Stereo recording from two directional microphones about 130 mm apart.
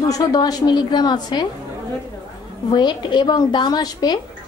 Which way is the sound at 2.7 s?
35° left (ahead or behind).